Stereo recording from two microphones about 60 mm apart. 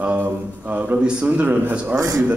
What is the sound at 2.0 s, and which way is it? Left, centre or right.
Speech, right.